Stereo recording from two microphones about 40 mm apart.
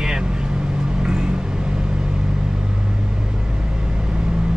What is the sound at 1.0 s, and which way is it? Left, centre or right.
Vehicle, centre.